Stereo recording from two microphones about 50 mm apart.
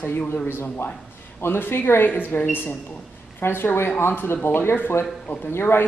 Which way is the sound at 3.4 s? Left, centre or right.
Left.